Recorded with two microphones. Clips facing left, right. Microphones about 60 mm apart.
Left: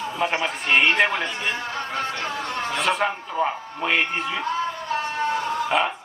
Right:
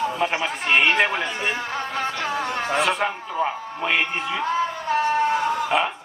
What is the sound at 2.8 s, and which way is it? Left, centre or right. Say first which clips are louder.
A man's voice: left 1 dB; centre.